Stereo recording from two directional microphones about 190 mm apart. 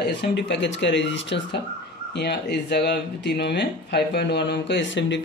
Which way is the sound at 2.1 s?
60° left (ahead or behind).